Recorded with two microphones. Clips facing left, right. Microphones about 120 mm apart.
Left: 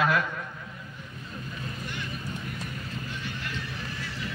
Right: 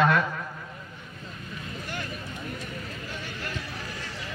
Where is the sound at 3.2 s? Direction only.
45° right (ahead or behind).